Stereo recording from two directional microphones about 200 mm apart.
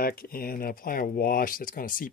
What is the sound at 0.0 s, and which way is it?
Speech, 45° left (ahead or behind).